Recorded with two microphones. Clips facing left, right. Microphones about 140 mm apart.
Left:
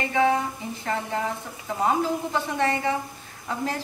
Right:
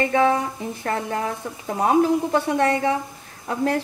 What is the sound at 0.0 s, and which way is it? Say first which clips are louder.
A woman's voice: right 3 dB; 55° right (ahead or behind).